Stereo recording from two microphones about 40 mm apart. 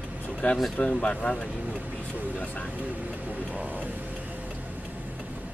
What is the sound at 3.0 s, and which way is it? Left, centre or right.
Vehicle, right.